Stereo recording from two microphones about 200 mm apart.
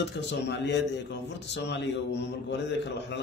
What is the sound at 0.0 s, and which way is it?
A man's voice, 60° left (ahead or behind).